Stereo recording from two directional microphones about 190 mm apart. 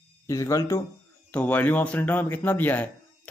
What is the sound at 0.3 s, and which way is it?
Speech, 15° left (ahead or behind).